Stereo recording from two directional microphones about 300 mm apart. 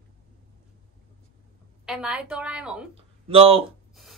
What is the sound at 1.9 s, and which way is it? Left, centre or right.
A woman's voice, centre.